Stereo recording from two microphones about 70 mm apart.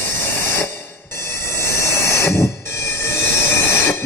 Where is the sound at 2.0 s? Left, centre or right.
Left.